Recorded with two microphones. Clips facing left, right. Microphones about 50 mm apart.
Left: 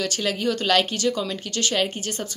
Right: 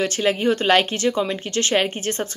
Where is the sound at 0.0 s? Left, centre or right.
Right.